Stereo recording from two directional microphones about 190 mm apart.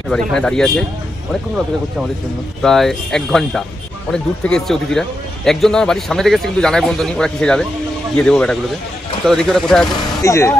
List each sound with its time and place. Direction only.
0.1 s speech: 5° left (ahead or behind)
2.6 s speech: centre (ahead or behind)
10.2 s speech: 15° left (ahead or behind)